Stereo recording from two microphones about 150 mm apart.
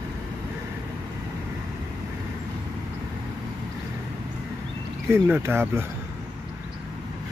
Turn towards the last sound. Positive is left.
turn(degrees=-15)  # may be behind; listen again after turning